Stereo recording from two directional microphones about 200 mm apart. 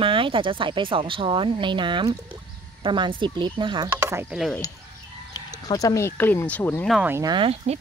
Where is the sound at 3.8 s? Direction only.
15° right (ahead or behind).